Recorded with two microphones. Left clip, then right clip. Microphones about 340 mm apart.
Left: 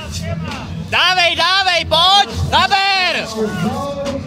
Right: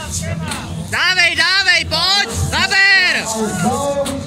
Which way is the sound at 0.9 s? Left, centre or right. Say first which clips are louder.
Left 1 dB; centre.